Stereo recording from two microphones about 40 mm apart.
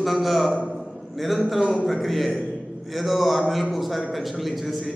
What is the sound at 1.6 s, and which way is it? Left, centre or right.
Speech, right.